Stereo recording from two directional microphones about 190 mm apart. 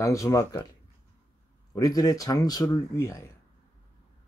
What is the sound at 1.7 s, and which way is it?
Speech, 20° left (ahead or behind).